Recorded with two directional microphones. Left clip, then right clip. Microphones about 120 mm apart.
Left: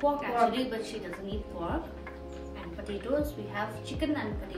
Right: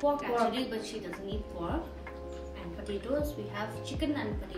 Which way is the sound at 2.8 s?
10° left (ahead or behind).